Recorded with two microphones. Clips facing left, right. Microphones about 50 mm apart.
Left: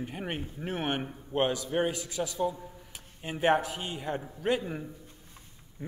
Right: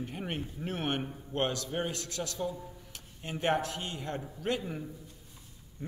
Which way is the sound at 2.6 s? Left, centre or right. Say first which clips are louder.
Left 1 dB; centre.